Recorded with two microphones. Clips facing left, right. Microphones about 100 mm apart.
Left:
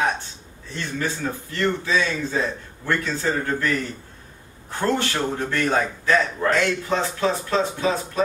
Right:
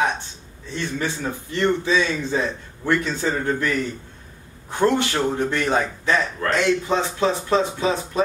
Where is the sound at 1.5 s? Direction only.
20° right (ahead or behind).